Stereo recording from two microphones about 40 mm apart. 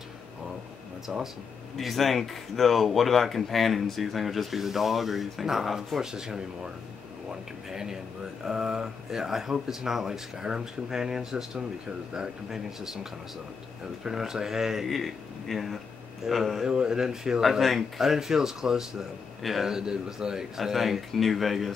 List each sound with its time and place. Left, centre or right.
1.1 s speech: centre
6.1 s speech: centre
7.7 s speech: centre
14.1 s speech: centre
14.9 s speech: centre
16.6 s speech: centre